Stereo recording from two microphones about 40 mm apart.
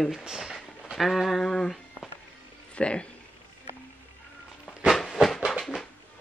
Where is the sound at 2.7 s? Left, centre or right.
Left.